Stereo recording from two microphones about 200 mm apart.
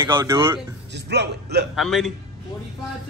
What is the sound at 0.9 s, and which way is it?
Speech, 55° right (ahead or behind).